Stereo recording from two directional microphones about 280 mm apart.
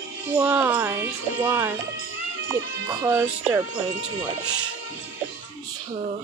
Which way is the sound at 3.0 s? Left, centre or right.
Centre.